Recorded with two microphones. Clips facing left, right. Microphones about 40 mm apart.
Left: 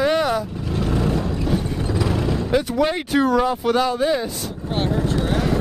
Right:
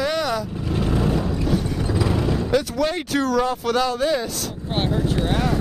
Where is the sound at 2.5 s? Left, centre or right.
Centre.